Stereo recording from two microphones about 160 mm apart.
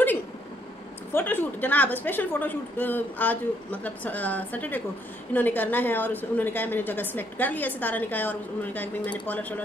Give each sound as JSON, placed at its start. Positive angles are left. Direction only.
{"t": 1.1, "sound": "a woman's voice", "side_deg": 15}